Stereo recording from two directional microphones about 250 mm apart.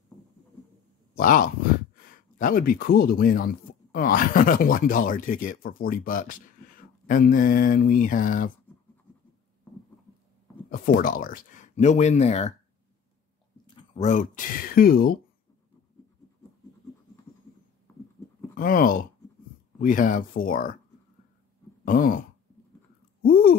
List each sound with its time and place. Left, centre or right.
1.1 s speech: left
10.7 s speech: left
13.9 s speech: left
18.5 s speech: left
21.8 s speech: left
23.2 s a sound: left